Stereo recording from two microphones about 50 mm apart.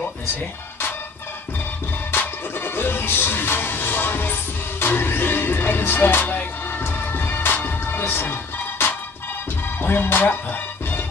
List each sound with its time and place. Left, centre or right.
2.1 s music: left